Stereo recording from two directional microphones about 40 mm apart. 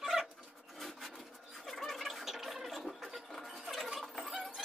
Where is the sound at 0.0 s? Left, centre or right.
Centre.